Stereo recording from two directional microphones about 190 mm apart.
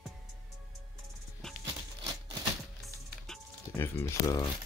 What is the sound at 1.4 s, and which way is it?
Music, centre (ahead or behind).